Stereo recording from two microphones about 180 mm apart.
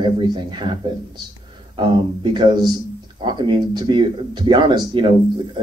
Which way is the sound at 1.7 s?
25° right (ahead or behind).